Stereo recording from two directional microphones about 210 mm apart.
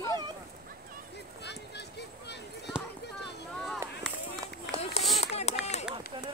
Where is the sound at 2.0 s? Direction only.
55° left (ahead or behind).